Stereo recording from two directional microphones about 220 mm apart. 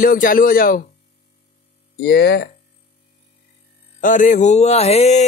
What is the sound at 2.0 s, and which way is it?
Speech, 45° left (ahead or behind).